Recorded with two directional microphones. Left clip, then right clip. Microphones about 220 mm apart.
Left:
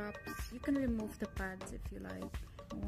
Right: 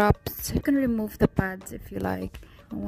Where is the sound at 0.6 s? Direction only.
50° right (ahead or behind).